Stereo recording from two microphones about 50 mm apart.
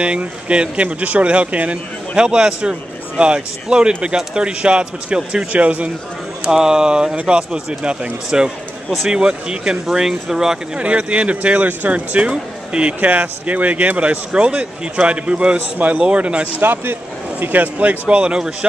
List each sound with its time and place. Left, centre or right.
0.0 s speech: right
2.1 s speech: centre
6.4 s speech: centre
10.8 s speech: right
16.5 s speech: right
18.0 s speech: right